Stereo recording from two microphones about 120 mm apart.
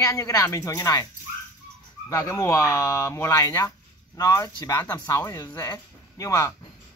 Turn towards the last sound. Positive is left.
turn(degrees=25)  # may be behind; listen again after turning